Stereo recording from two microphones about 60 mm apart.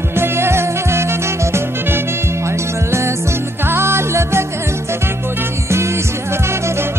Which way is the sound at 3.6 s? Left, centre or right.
Right.